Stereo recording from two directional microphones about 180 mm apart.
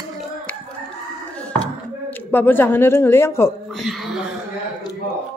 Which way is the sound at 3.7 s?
Centre (ahead or behind).